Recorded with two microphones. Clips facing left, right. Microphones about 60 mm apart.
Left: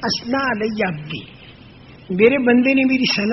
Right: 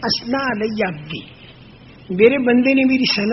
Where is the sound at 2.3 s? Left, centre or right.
Centre.